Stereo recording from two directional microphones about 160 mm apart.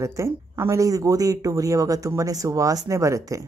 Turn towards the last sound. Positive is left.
turn(degrees=-20)  # may be behind; listen again after turning